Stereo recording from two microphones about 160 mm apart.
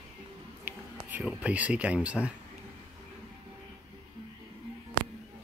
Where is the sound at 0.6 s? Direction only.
10° right (ahead or behind).